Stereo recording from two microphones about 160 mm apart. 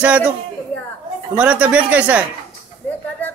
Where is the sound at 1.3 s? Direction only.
10° right (ahead or behind).